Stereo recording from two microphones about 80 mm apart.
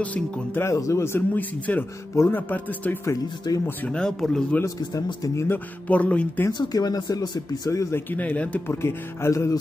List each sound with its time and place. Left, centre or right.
0.6 s music: left
1.3 s speech: centre
3.4 s speech: left
3.9 s speech: centre
4.6 s music: left
5.9 s speech: centre
6.6 s speech: left
7.9 s speech: left
8.6 s music: left